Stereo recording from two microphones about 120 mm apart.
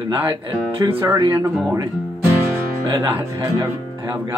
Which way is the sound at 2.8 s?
40° right (ahead or behind).